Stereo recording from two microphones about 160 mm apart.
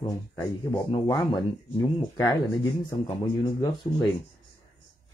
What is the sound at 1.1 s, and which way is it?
Speech, 30° left (ahead or behind).